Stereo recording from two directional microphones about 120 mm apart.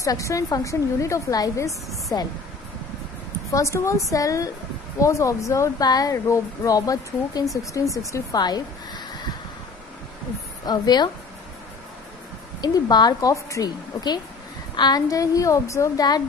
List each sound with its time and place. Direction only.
0.0 s speech: 25° left (ahead or behind)
3.5 s a woman's voice: 25° left (ahead or behind)
10.6 s a woman's voice: 35° left (ahead or behind)
12.6 s a woman's voice: 35° left (ahead or behind)